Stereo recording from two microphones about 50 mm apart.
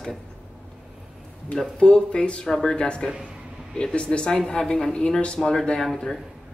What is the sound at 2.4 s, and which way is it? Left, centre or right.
Speech, centre.